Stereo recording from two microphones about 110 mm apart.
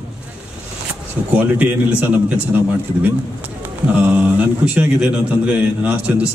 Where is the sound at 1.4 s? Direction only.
15° right (ahead or behind).